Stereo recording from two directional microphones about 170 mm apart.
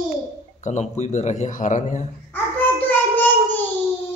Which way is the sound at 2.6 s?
10° left (ahead or behind).